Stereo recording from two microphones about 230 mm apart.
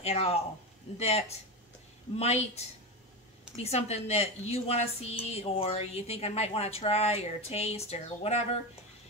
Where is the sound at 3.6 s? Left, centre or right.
Left.